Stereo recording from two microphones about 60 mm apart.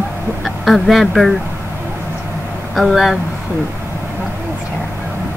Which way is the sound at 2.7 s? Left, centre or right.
Centre.